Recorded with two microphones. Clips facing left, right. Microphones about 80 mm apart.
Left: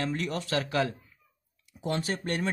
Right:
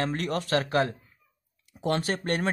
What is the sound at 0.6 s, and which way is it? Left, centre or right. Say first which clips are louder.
Speech: right 3 dB; right.